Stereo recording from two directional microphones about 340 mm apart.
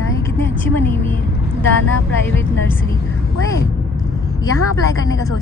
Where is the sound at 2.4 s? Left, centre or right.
Centre.